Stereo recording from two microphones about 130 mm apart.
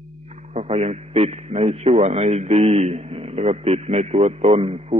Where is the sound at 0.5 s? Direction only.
55° right (ahead or behind).